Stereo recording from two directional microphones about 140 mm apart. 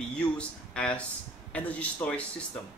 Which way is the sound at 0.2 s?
10° left (ahead or behind).